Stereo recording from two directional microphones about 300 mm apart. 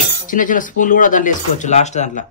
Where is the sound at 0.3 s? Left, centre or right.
Left.